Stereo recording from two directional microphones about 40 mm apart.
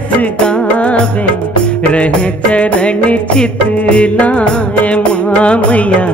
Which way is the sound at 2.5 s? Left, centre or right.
Left.